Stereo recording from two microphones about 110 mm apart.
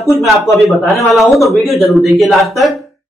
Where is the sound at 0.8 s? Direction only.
Centre (ahead or behind).